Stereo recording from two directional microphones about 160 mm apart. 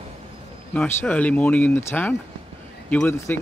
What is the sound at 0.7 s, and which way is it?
Speech, 10° left (ahead or behind).